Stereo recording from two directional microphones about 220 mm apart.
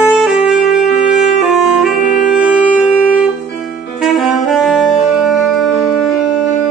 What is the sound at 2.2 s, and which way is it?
Music, 5° right (ahead or behind).